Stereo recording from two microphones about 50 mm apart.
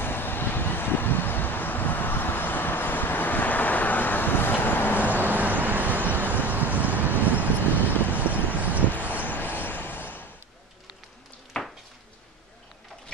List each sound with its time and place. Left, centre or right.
0.0 s vehicle: left
4.9 s vehicle: right
7.8 s vehicle: left
8.2 s horse: right
9.2 s train: left
11.6 s a sound: centre